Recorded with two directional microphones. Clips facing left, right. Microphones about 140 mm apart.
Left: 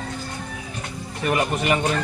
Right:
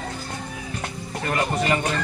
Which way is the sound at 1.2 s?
15° left (ahead or behind).